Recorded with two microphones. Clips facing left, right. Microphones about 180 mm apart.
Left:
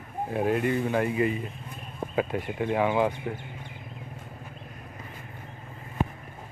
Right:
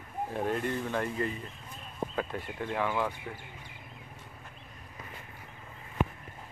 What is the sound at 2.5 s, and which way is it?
Speech, 15° left (ahead or behind).